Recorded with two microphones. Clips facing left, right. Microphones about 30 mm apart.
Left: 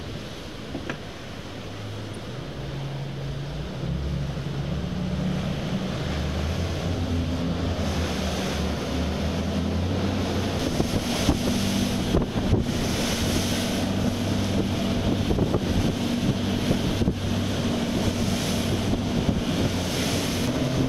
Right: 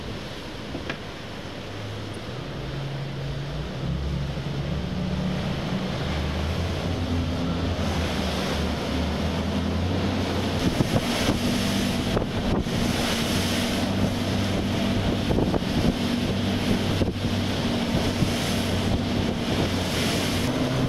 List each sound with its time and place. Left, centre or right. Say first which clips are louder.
5.3 s vehicle: even; right
9.8 s vehicle: right 1 dB; right